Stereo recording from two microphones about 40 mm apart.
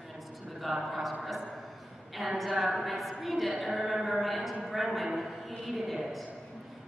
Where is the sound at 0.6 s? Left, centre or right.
Centre.